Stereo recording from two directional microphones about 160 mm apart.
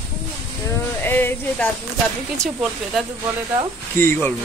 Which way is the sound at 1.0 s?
10° left (ahead or behind).